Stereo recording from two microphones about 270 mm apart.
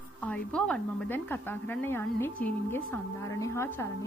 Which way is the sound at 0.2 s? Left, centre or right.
Centre.